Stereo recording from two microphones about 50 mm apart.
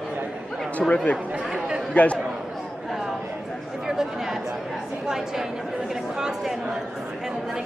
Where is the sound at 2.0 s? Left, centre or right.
Left.